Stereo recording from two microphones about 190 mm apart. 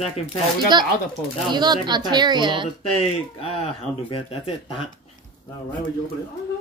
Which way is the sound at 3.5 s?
30° left (ahead or behind).